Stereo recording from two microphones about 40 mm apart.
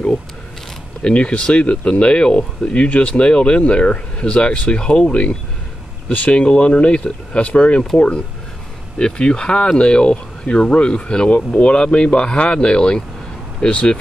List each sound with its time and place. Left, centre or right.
1.0 s speech: left
8.9 s speech: left